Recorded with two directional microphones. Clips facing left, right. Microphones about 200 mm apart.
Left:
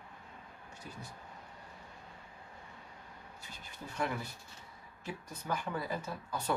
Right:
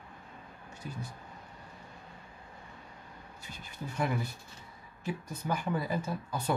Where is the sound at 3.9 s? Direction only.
10° right (ahead or behind).